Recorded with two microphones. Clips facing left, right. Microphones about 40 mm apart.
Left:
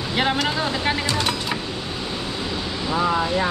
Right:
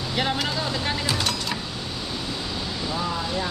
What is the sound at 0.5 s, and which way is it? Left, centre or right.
Speech, left.